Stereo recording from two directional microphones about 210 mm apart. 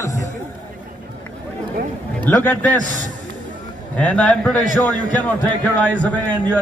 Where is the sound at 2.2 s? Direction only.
10° left (ahead or behind).